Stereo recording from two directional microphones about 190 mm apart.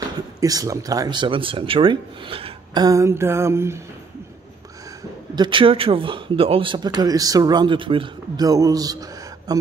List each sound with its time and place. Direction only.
0.4 s a man's voice: 20° right (ahead or behind)
5.3 s a man's voice: 25° right (ahead or behind)